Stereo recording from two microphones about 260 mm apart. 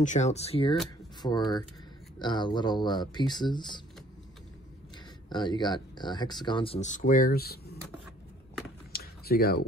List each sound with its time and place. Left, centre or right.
0.0 s speech: left
5.3 s speech: centre; by 7.7 s left
8.9 s a sound: left